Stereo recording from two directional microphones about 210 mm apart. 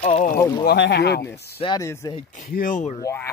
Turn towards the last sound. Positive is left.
turn(degrees=15)  # may be behind; listen again after turning